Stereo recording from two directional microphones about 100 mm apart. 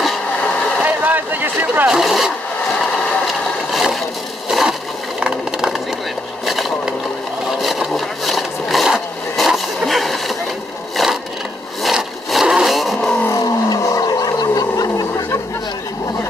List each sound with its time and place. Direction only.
0.8 s vehicle: 15° right (ahead or behind)
1.9 s speech: centre (ahead or behind)
3.7 s a sound: centre (ahead or behind)
7.6 s vehicle: centre (ahead or behind)
11.8 s vehicle: centre (ahead or behind)
13.3 s vehicle: 35° left (ahead or behind)